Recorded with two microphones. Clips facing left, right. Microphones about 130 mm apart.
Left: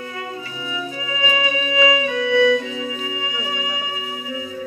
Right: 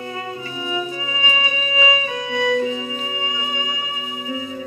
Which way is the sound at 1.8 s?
30° right (ahead or behind).